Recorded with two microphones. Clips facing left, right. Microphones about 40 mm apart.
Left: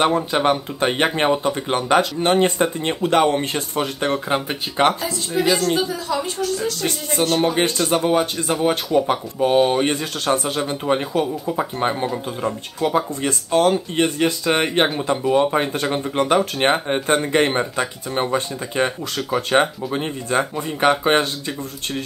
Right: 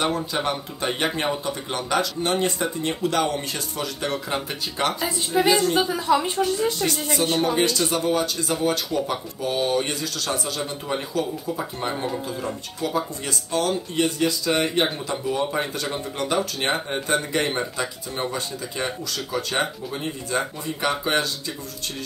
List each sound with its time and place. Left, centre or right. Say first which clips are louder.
0.0 s speech: left 6 dB; left
5.3 s a woman's voice: even; centre
5.8 s a woman's voice: right 2 dB; centre
7.3 s speech: left 3 dB; left
7.9 s speech: left 4 dB; left